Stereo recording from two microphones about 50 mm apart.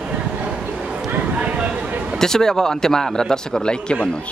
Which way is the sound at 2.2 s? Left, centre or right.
Centre.